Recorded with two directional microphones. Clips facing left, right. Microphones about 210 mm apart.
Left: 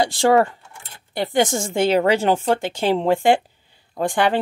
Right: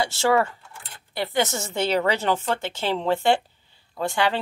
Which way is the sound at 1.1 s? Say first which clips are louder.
Left 5 dB; 50° left (ahead or behind).